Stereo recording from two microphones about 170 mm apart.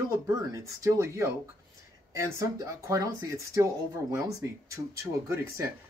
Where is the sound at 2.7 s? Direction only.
20° right (ahead or behind).